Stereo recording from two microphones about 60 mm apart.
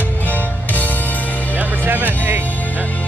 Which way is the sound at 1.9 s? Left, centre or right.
Right.